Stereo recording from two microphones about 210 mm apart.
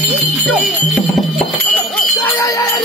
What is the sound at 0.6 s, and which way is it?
Music, centre (ahead or behind).